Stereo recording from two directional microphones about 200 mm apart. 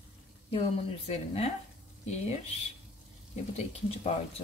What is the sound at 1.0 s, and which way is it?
Speech, 30° left (ahead or behind).